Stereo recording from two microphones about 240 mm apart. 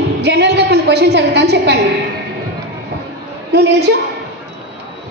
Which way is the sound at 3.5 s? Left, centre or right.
Right.